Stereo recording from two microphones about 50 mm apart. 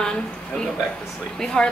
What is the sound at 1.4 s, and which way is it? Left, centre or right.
Speech, centre.